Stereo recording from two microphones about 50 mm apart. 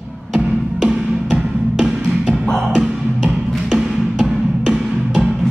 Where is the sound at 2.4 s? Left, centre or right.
Centre.